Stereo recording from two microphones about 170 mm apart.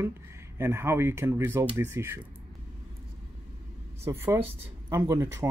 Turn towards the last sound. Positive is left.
turn(degrees=-15)  # may be behind; listen again after turning